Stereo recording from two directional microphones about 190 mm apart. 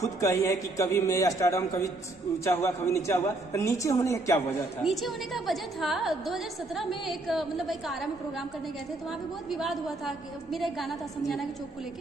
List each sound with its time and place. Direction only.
0.0 s a woman's voice: 15° left (ahead or behind)
4.8 s a woman's voice: centre (ahead or behind)
9.5 s a woman's voice: centre (ahead or behind)